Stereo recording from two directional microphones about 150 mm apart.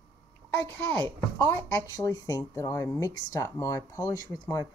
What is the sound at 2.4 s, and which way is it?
Speech, 20° left (ahead or behind).